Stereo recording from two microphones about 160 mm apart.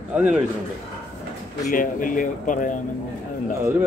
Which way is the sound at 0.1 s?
5° right (ahead or behind).